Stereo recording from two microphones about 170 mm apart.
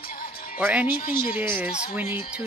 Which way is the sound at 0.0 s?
55° left (ahead or behind).